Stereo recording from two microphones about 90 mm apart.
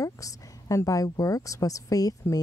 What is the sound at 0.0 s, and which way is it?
A woman's voice, 40° left (ahead or behind).